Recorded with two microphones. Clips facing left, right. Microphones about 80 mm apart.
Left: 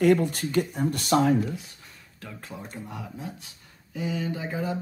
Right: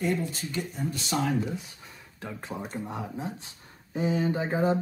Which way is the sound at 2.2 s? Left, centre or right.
Right.